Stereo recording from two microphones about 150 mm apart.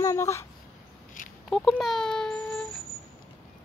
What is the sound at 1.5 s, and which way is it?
A child's voice, centre (ahead or behind).